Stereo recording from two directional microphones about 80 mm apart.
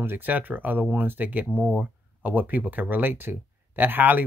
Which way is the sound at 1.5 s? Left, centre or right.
Centre.